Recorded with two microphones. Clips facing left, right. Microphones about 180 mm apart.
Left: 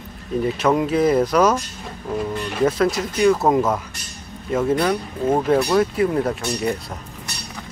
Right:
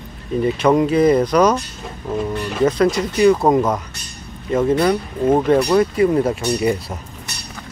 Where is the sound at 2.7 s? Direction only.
5° left (ahead or behind).